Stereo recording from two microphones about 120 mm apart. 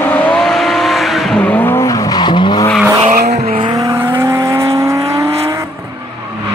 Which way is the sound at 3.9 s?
20° right (ahead or behind).